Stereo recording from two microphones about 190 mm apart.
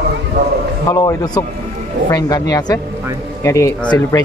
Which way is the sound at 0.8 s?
20° left (ahead or behind).